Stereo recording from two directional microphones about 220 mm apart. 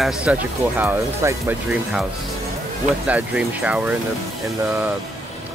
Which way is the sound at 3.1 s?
5° right (ahead or behind).